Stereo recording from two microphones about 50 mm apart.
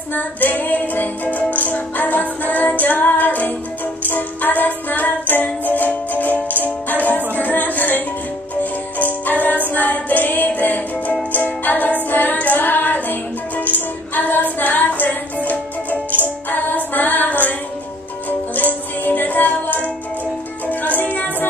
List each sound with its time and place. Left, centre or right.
0.1 s music: left